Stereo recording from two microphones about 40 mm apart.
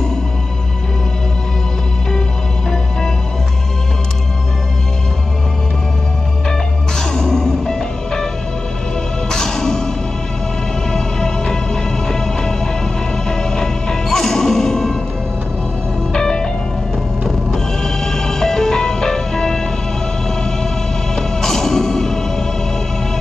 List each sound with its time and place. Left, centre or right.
7.0 s music: centre
9.3 s music: centre
10.9 s music: centre
16.1 s music: centre